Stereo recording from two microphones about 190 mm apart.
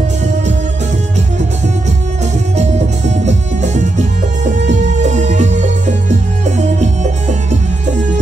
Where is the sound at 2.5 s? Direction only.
35° right (ahead or behind).